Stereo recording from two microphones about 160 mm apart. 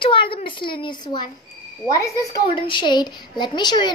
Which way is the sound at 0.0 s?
30° left (ahead or behind).